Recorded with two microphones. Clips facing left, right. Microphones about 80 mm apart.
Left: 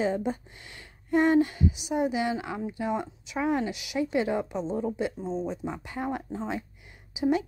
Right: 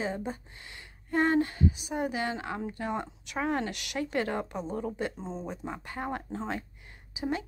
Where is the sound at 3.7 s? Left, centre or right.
Right.